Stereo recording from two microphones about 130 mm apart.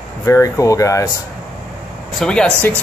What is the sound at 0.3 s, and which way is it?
Speech, 25° left (ahead or behind).